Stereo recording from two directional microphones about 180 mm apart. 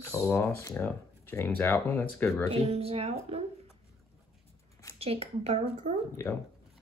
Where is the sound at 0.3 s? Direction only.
10° left (ahead or behind).